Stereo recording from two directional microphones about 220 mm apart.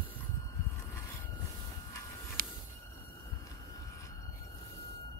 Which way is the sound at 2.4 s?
40° right (ahead or behind).